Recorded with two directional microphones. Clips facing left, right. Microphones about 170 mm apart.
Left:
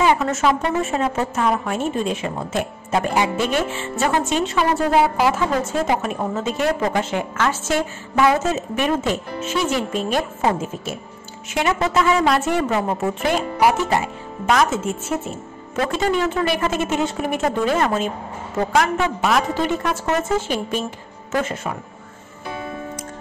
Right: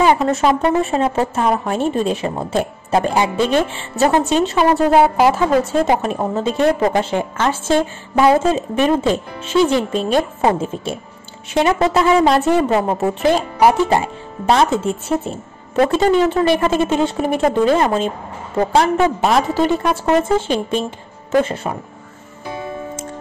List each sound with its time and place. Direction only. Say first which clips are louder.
0.0 s a woman's voice: right 3 dB; 35° right (ahead or behind)